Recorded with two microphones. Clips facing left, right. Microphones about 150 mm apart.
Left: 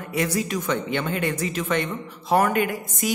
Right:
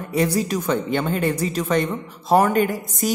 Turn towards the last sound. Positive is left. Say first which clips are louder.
# right 3 dB
turn(degrees=-35)  # may be behind; listen again after turning